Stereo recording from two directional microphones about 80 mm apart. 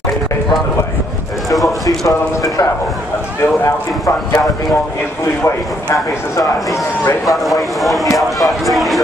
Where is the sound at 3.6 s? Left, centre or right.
Left.